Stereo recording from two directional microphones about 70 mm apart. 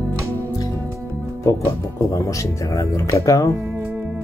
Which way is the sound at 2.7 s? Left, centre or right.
Left.